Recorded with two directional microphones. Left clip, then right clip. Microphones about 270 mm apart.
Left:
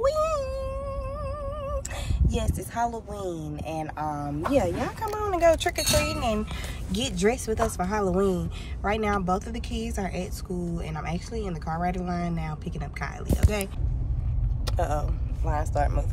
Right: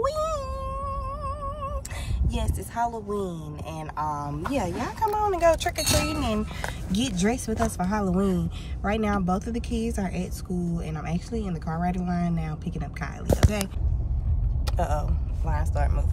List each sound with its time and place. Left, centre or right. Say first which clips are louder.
0.0 s a sound: left 2 dB; centre
2.2 s speech: left 2 dB; centre
14.8 s speech: even; centre